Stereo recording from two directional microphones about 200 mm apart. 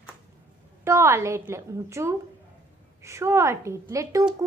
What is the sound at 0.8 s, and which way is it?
A woman's voice, 15° right (ahead or behind).